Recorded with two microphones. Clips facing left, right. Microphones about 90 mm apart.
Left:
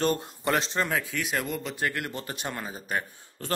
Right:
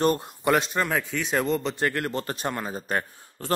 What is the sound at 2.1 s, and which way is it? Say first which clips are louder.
Speech: right 6 dB; 55° right (ahead or behind).